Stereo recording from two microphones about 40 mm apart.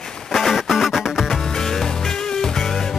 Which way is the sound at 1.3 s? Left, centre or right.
Centre.